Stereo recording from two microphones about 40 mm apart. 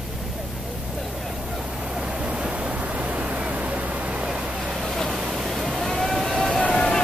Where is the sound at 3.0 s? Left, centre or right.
Right.